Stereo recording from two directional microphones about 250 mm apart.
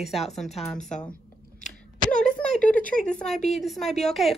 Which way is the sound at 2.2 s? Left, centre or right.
Centre.